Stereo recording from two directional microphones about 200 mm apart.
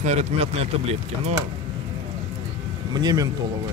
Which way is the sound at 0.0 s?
35° right (ahead or behind).